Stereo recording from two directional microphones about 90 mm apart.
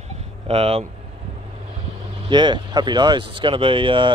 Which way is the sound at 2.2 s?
60° right (ahead or behind).